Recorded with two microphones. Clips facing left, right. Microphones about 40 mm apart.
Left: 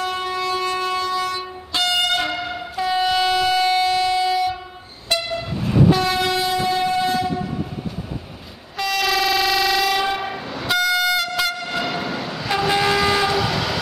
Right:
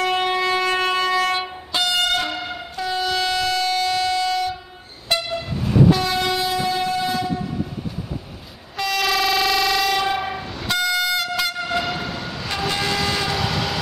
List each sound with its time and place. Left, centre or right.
0.0 s train: right
1.7 s train: centre
2.1 s train: centre
8.7 s train: centre